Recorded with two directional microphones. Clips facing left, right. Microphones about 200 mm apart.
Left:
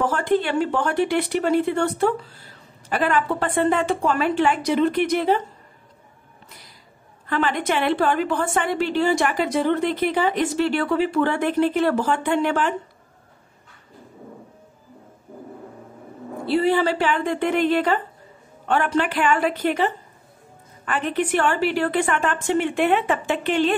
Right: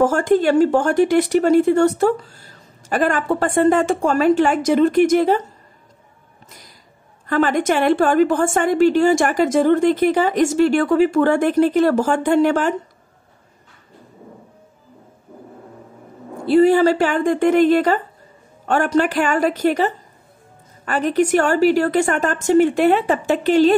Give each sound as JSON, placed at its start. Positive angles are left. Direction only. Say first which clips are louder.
{"t": 0.0, "sound": "speech", "louder": "right 6 dB", "side_deg": -45}
{"t": 7.2, "sound": "speech", "louder": "right 5 dB", "side_deg": -45}
{"t": 16.4, "sound": "a woman's voice", "louder": "right 7 dB", "side_deg": -45}